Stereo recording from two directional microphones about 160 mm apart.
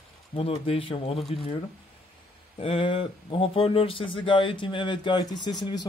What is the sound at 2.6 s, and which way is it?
Speech, 35° left (ahead or behind).